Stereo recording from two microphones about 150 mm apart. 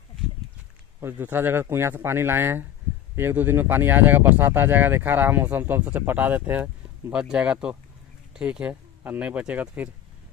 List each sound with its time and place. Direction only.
1.0 s speech: 10° right (ahead or behind)